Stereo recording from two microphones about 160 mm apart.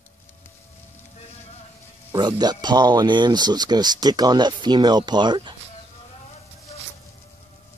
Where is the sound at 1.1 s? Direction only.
45° left (ahead or behind).